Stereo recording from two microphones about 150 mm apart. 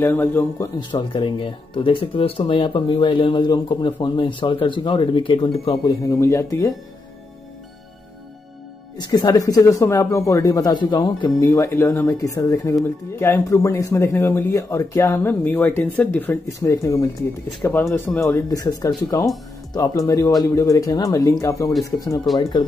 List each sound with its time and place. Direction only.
0.0 s a man's voice: 15° left (ahead or behind)
0.7 s speech: 30° left (ahead or behind)
6.0 s speech: 20° left (ahead or behind)
8.9 s a man's voice: 30° left (ahead or behind)